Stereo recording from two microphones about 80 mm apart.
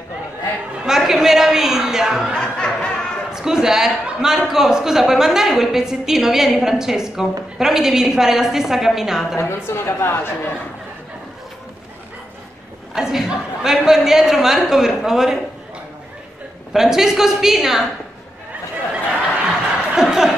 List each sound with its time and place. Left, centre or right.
0.8 s a sound: centre
2.3 s music: centre
3.3 s a man's voice: centre
9.4 s a woman's voice: left
12.9 s a man's voice: centre
16.7 s a man's voice: centre
19.9 s a sound: centre